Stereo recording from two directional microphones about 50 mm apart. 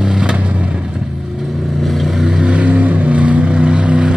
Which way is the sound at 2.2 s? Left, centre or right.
Centre.